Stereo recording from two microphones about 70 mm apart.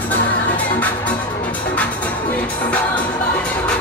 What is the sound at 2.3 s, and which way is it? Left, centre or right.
Music, left.